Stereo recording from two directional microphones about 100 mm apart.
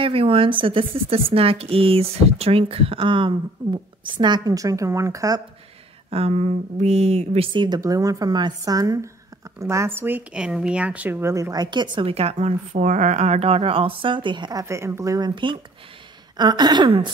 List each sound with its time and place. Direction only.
0.0 s speech: 65° right (ahead or behind)
1.3 s speech: 75° right (ahead or behind); by 5.4 s 35° right (ahead or behind)
6.0 s speech: 90° right
7.5 s a woman's voice: 50° right (ahead or behind)
7.8 s a woman's voice: 35° right (ahead or behind)
10.3 s speech: 10° right (ahead or behind); by 11.5 s 25° right (ahead or behind)
11.5 s a woman's voice: 45° right (ahead or behind)
12.1 s speech: 90° right; by 14.6 s 50° right (ahead or behind)
14.6 s a woman's voice: 30° right (ahead or behind); by 16.9 s 45° right (ahead or behind)